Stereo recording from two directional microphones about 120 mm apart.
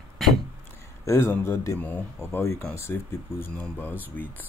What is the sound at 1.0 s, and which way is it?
Speech, 20° left (ahead or behind).